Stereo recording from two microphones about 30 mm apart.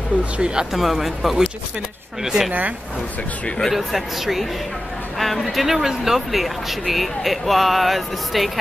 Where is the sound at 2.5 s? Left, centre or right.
Right.